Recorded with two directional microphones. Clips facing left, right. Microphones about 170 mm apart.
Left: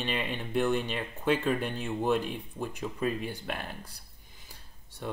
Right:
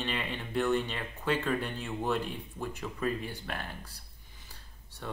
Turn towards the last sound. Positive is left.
turn(degrees=20)  # may be behind; listen again after turning